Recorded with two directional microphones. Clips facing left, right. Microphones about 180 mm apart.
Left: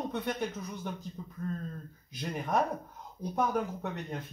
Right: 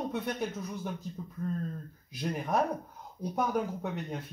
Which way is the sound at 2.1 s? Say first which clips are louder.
Right 1 dB; centre (ahead or behind).